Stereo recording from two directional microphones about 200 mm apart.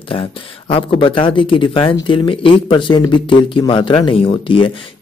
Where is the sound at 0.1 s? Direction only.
25° left (ahead or behind).